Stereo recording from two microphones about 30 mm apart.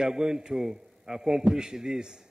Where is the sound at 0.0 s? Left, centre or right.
Right.